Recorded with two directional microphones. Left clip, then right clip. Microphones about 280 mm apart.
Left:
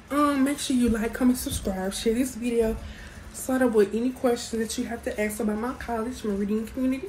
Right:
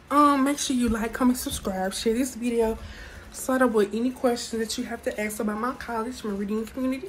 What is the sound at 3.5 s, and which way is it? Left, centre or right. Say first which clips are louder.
Speech: even; right.